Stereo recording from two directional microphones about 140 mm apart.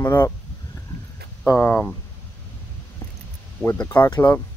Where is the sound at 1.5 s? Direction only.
15° left (ahead or behind).